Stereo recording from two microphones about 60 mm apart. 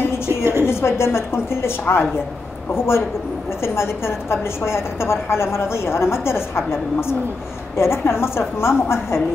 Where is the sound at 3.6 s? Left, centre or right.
Left.